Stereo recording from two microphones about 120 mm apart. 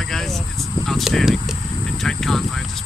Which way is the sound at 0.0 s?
5° left (ahead or behind).